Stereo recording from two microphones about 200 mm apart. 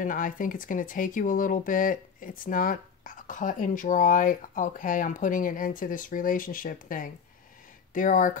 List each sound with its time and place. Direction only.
0.0 s speech: 40° left (ahead or behind)